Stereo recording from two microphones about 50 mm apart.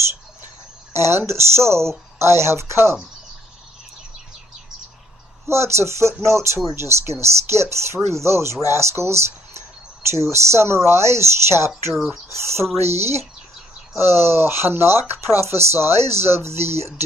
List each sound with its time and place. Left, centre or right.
0.9 s speech: right
5.5 s speech: right
11.9 s speech: centre
12.3 s speech: right
13.9 s speech: right